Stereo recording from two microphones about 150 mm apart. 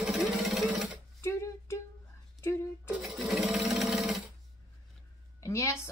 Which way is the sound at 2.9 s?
Centre (ahead or behind).